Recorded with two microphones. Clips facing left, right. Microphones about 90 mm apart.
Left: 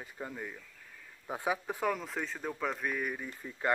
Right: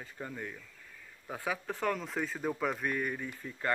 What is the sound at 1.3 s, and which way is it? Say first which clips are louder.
Speech: left 2 dB; 20° left (ahead or behind).